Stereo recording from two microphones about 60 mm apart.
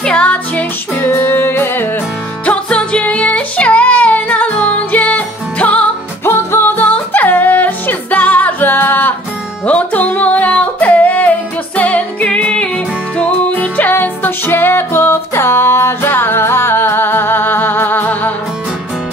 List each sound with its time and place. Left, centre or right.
0.0 s music: centre
1.0 s music: left
2.4 s music: centre
6.2 s music: left